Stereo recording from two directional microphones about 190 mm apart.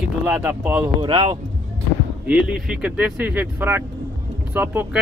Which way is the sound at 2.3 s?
5° right (ahead or behind).